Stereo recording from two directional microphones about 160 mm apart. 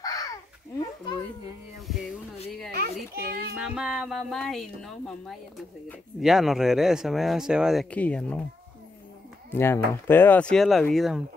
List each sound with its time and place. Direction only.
0.0 s a sound: 20° left (ahead or behind)
2.7 s children playing: 70° right (ahead or behind)
3.6 s speech: 5° right (ahead or behind)
9.5 s speech: 15° left (ahead or behind); by 11.2 s centre (ahead or behind)